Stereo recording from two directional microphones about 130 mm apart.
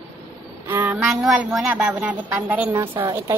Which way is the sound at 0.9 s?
5° right (ahead or behind).